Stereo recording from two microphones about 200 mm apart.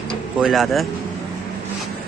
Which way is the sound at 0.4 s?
Centre (ahead or behind).